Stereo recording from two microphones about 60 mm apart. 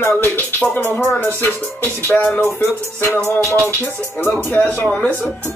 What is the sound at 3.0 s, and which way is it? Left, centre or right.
Music, left.